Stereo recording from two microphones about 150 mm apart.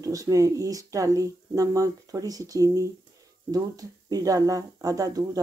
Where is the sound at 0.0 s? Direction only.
25° right (ahead or behind).